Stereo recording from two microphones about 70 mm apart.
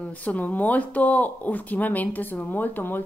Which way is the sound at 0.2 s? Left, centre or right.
Left.